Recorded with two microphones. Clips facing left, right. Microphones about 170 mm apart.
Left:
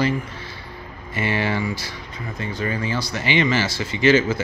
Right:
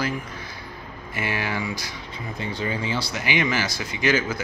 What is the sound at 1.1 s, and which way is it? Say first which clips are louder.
Speech: left 5 dB; 10° right (ahead or behind).